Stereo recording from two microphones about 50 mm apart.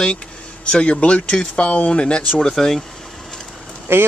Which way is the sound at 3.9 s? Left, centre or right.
Right.